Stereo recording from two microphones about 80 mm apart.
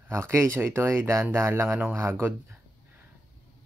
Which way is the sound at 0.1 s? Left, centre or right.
Right.